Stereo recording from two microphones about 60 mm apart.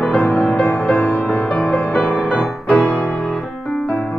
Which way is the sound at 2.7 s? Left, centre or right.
Centre.